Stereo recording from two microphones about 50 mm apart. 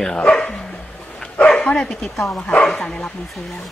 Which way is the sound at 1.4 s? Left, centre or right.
Centre.